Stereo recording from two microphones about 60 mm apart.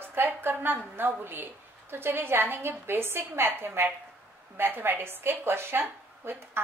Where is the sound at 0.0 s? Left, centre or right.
Right.